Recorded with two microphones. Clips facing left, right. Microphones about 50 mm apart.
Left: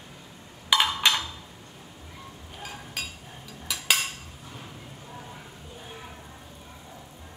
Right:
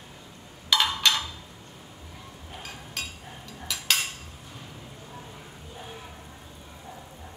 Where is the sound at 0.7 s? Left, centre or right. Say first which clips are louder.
Left 1 dB; centre.